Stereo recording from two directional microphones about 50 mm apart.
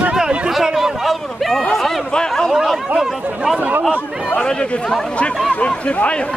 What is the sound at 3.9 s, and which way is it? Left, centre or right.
Speech, left.